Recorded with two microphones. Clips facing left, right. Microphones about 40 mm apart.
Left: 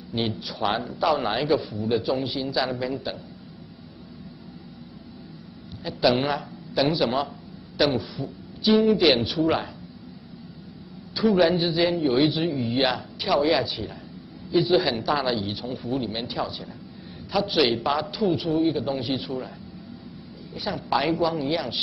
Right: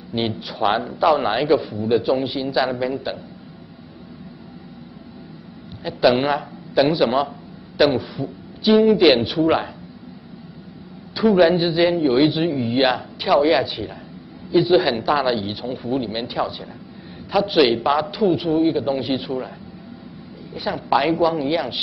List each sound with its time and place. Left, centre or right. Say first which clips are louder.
0.1 s a man's voice: right 4 dB; centre
5.9 s a man's voice: right 5 dB; centre
11.2 s a man's voice: right 5 dB; centre
20.5 s a man's voice: right 6 dB; centre